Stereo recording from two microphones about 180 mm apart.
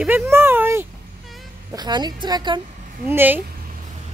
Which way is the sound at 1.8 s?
25° right (ahead or behind).